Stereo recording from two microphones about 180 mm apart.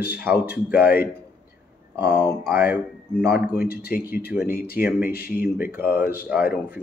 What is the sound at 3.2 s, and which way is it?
Speech, 60° left (ahead or behind).